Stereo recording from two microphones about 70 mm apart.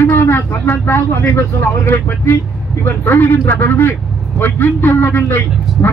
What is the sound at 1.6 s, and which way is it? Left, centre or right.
A man's voice, left.